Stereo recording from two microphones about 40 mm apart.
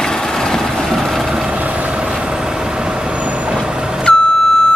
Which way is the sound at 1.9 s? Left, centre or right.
Right.